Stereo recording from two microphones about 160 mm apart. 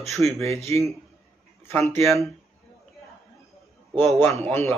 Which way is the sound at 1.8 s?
Centre (ahead or behind).